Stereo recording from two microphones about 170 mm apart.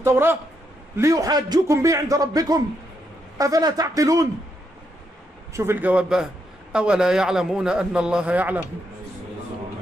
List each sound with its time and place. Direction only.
0.0 s a man's voice: 15° right (ahead or behind)
5.5 s a man's voice: 15° right (ahead or behind)